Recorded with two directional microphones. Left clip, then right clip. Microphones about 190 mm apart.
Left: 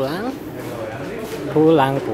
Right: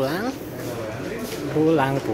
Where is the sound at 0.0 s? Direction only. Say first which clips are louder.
Left 1 dB; centre (ahead or behind).